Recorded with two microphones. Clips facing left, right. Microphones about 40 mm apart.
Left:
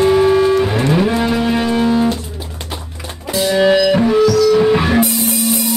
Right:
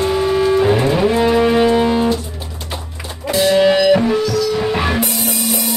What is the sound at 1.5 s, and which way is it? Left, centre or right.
Music, centre.